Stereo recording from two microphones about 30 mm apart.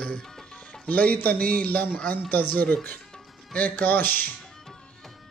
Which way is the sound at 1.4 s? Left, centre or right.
Left.